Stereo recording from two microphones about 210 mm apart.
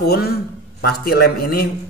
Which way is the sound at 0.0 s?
50° left (ahead or behind).